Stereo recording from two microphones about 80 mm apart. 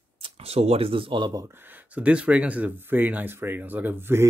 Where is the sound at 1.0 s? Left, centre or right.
Right.